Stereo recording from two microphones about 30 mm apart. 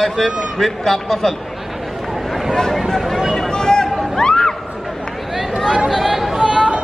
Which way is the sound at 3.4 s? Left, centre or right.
Left.